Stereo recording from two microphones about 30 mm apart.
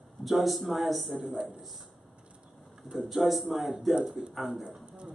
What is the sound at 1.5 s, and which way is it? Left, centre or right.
Speech, centre.